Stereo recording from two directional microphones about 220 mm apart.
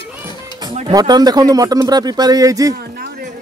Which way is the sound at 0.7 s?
20° right (ahead or behind).